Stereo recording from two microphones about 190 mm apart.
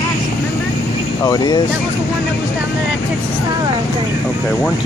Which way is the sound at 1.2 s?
20° left (ahead or behind).